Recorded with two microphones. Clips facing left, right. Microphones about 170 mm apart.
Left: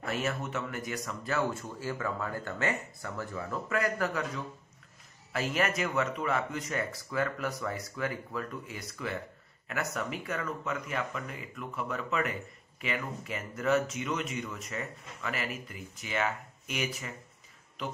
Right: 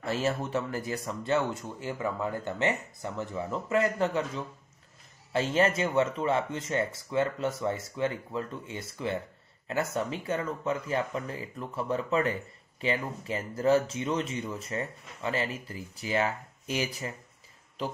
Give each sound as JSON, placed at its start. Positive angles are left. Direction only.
{"t": 0.0, "sound": "speech", "side_deg": -30}
{"t": 5.3, "sound": "speech", "side_deg": -30}